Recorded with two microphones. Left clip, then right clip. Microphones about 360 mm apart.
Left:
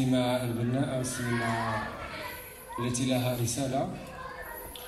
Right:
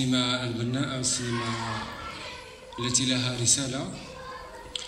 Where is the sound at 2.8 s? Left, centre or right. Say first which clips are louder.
Right 3 dB; centre.